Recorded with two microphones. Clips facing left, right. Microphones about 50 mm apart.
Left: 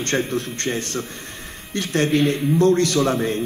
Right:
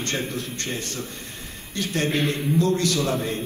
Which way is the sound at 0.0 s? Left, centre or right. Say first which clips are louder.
Left 6 dB; left.